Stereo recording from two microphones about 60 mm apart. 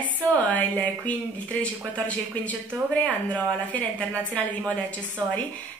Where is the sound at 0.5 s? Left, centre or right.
Left.